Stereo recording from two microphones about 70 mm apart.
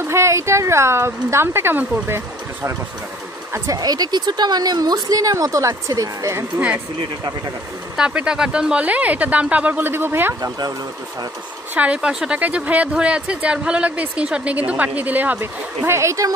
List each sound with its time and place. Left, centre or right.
0.0 s speech: right
3.6 s speech: right
7.9 s speech: centre; by 10.3 s right
11.7 s speech: centre
12.4 s speech: right